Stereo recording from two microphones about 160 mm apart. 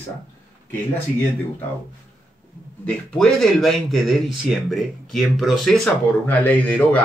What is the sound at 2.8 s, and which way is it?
Speech, centre (ahead or behind).